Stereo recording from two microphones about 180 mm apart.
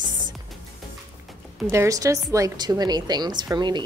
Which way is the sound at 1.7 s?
15° right (ahead or behind).